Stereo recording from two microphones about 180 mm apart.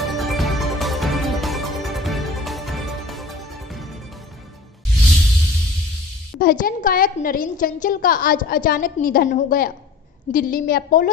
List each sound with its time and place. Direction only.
0.0 s music: centre (ahead or behind)
5.0 s music: centre (ahead or behind)
6.4 s a woman's voice: 50° left (ahead or behind)